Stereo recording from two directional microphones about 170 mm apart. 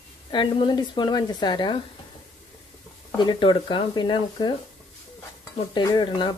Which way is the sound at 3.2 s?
30° left (ahead or behind).